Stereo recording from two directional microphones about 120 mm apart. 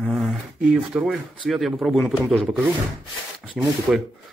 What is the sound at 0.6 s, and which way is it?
Speech, 10° right (ahead or behind).